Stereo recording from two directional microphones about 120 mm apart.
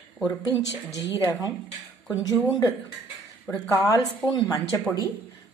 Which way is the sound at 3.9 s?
25° left (ahead or behind).